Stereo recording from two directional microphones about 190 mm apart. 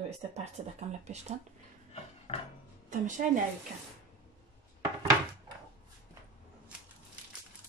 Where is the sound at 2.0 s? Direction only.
30° left (ahead or behind).